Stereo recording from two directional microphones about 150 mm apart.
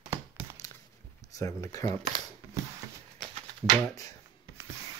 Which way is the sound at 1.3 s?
20° left (ahead or behind).